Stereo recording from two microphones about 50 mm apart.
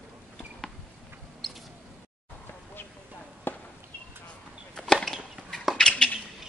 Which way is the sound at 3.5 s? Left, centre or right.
Left.